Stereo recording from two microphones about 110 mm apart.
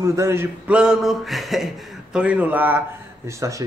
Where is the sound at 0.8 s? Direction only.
5° right (ahead or behind).